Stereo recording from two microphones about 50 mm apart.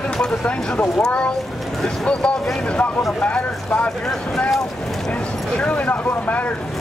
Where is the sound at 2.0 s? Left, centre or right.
Centre.